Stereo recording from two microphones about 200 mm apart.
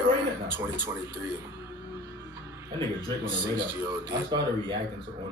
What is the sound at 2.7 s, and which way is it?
Speech, 25° right (ahead or behind).